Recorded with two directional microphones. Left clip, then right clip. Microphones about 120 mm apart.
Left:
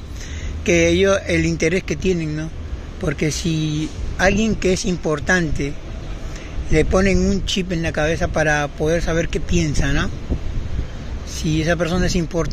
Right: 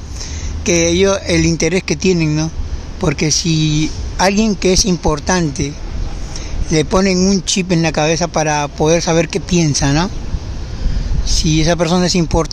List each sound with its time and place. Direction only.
0.7 s speech: 30° right (ahead or behind)
6.7 s speech: 35° right (ahead or behind)
7.8 s speech: 30° right (ahead or behind)
11.3 s speech: 45° right (ahead or behind)